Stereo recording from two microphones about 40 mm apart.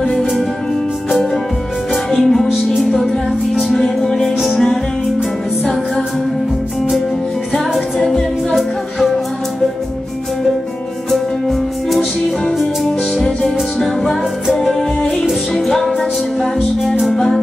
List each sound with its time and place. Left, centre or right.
2.2 s music: centre
3.6 s music: centre
7.5 s music: centre
11.1 s music: centre